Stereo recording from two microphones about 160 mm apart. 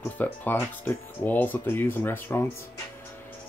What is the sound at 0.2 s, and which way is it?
Speech, 10° left (ahead or behind).